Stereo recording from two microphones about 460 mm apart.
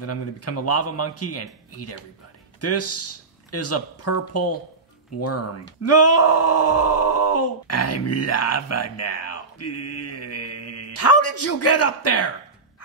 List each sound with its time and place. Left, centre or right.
0.0 s a man's voice: left